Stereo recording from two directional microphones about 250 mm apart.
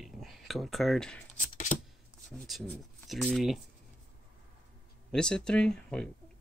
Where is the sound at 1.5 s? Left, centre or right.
Left.